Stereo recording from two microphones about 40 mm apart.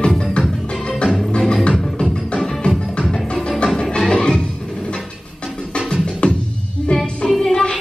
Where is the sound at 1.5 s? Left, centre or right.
Left.